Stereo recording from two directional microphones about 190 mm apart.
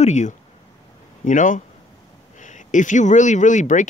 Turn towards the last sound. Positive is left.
turn(degrees=40)  # may be behind; listen again after turning